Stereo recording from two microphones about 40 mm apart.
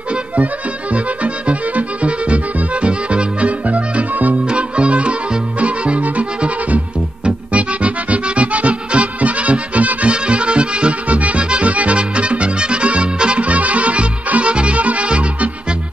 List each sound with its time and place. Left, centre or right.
0.1 s music: right
4.5 s music: right